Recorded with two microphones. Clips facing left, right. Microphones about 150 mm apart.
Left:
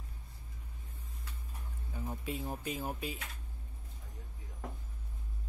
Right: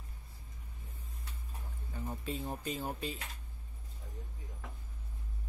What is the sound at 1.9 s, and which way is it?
Speech, 5° left (ahead or behind).